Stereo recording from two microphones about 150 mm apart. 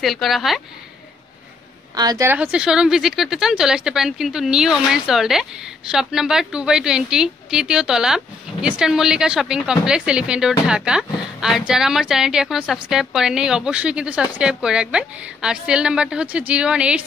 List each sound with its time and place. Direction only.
0.0 s a woman's voice: centre (ahead or behind)
2.0 s a woman's voice: 25° right (ahead or behind)
2.2 s a woman's voice: 10° right (ahead or behind)